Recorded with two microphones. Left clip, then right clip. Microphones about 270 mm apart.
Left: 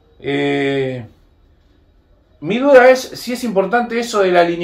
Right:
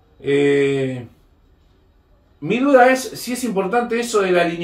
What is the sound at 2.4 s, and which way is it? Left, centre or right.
Speech, centre.